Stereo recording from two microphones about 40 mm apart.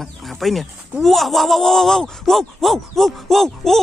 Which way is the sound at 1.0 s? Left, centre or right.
Centre.